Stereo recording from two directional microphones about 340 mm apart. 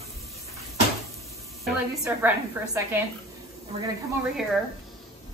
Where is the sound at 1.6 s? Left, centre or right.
Centre.